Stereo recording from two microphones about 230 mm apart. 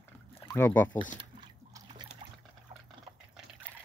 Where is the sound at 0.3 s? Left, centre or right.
Left.